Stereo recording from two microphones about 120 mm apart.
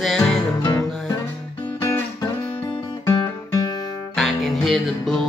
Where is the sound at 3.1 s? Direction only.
35° left (ahead or behind).